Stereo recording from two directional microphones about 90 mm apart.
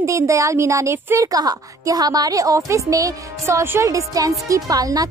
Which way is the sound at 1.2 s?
45° right (ahead or behind).